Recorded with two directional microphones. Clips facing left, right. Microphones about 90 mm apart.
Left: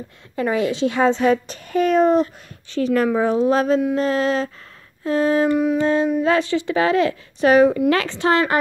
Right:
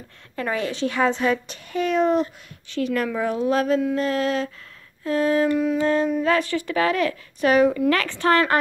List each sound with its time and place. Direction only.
0.4 s a woman's voice: 20° left (ahead or behind)
5.6 s a woman's voice: 15° left (ahead or behind); by 7.8 s 35° left (ahead or behind)
7.8 s a woman's voice: 20° left (ahead or behind)